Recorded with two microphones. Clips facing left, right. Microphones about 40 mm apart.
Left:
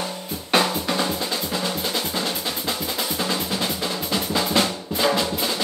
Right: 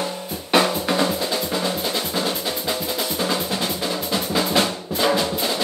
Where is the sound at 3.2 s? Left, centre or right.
Centre.